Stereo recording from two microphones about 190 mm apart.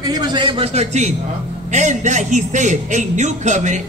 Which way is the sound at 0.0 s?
20° right (ahead or behind).